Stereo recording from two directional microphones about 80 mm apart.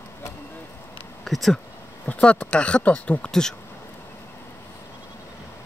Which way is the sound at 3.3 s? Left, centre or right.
Centre.